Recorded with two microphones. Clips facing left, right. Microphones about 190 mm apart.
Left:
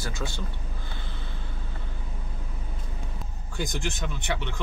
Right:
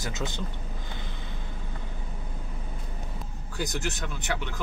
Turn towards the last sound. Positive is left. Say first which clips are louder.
# left 1 dB
turn(degrees=0)  # may be behind; listen again after turning